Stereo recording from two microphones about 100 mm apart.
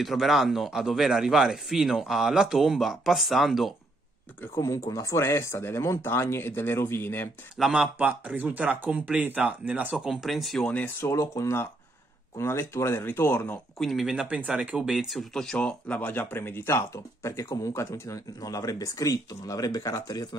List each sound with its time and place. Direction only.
0.0 s speech: centre (ahead or behind)
4.6 s speech: 30° left (ahead or behind)
7.5 s speech: 5° right (ahead or behind)
10.7 s speech: 15° left (ahead or behind)
11.1 s speech: 30° left (ahead or behind)
13.7 s speech: centre (ahead or behind)
14.2 s speech: 10° right (ahead or behind); by 20.2 s 40° left (ahead or behind)